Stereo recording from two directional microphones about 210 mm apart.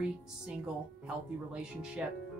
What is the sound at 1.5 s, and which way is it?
Speech, 5° right (ahead or behind).